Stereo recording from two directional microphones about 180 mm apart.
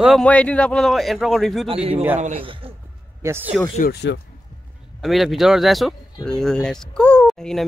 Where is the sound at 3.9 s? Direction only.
70° left (ahead or behind).